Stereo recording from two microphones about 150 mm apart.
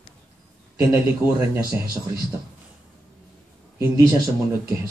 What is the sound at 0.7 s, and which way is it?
Speech, 15° right (ahead or behind).